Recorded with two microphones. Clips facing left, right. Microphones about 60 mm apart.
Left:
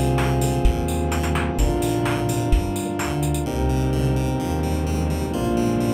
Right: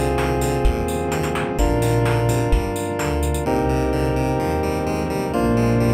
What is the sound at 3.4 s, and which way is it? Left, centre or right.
Music, right.